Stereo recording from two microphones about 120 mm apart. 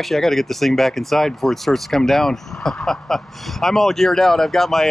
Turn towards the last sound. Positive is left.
turn(degrees=0)  # may be behind; listen again after turning